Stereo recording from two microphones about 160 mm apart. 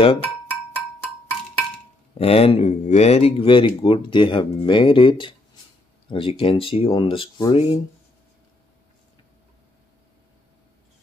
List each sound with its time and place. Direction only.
0.2 s music: 10° left (ahead or behind)
2.1 s speech: 35° left (ahead or behind)